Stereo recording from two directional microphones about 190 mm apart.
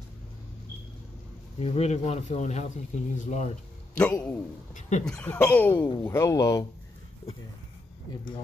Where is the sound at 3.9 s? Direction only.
5° left (ahead or behind).